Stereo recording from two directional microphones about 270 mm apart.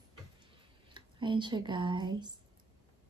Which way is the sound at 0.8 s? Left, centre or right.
Centre.